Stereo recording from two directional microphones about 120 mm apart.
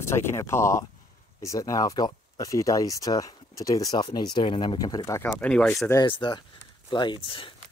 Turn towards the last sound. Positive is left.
turn(degrees=45)  # may be behind; listen again after turning